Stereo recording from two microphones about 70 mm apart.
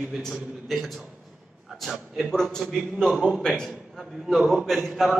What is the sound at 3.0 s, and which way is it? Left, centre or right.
Speech, centre.